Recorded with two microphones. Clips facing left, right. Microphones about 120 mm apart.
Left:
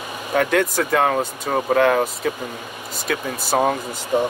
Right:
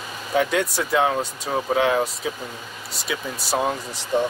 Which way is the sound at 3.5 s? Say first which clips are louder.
Left 4 dB; 80° left.